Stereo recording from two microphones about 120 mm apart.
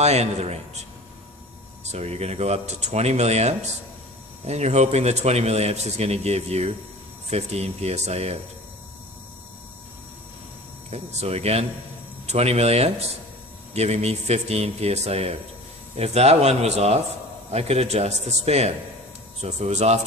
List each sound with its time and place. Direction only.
0.0 s a man's voice: 65° right (ahead or behind)
1.9 s a man's voice: 65° right (ahead or behind)
10.9 s a man's voice: 60° right (ahead or behind)